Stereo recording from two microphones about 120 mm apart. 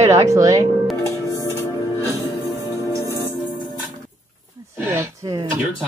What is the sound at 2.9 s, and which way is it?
Music, 20° left (ahead or behind).